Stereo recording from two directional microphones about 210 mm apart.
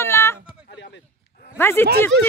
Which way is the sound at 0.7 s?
55° left (ahead or behind).